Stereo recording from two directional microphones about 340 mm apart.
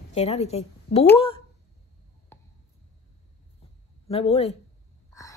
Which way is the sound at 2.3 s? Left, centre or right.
Centre.